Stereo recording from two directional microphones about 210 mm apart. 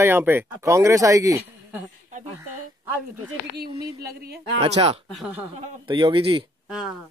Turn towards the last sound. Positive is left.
turn(degrees=-5)  # may be behind; listen again after turning